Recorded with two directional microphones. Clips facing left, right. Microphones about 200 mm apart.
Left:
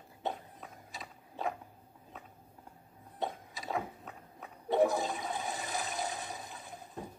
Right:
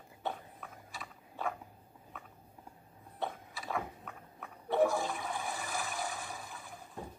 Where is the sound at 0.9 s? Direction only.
20° left (ahead or behind).